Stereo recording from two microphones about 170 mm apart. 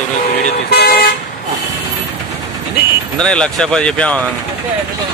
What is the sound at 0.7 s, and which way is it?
Speech, 70° left (ahead or behind).